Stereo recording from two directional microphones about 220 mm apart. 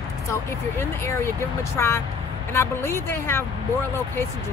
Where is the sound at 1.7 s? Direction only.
10° left (ahead or behind).